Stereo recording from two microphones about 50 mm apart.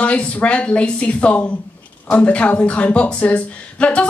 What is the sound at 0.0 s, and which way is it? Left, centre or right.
Speech, left.